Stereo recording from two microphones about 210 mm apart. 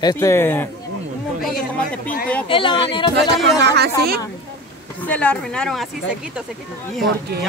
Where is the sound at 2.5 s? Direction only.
25° left (ahead or behind).